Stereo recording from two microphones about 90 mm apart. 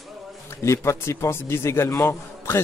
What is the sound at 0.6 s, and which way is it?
A man's voice, 30° left (ahead or behind).